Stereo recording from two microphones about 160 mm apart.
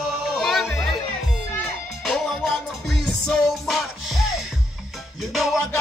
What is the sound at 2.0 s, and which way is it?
Music, centre (ahead or behind).